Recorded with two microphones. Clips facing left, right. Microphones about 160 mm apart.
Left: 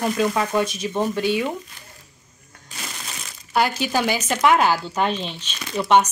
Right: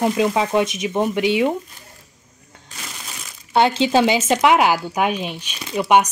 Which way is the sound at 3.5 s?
25° right (ahead or behind).